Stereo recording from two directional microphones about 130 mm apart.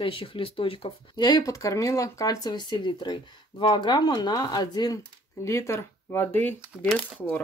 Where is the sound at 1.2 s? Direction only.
30° left (ahead or behind).